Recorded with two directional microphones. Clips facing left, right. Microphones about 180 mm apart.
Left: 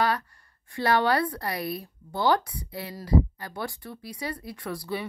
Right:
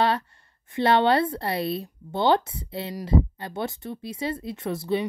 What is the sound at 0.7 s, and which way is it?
Speech, 25° right (ahead or behind).